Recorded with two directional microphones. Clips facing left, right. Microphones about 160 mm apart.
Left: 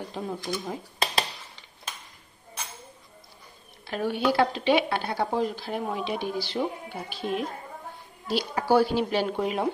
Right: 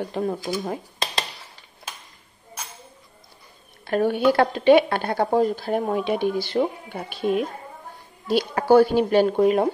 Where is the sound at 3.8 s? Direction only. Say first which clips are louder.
Right 6 dB; 50° right (ahead or behind).